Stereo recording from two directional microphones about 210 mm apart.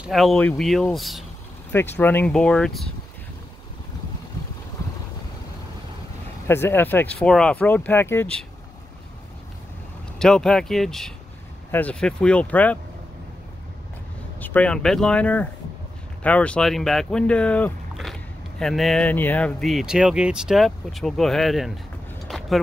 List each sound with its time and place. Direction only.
0.0 s speech: centre (ahead or behind)
6.4 s speech: 10° left (ahead or behind)
10.1 s speech: 5° left (ahead or behind)
14.4 s speech: 5° left (ahead or behind)
22.3 s vehicle: centre (ahead or behind)